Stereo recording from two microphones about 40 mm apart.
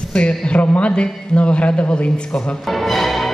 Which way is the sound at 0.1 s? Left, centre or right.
Left.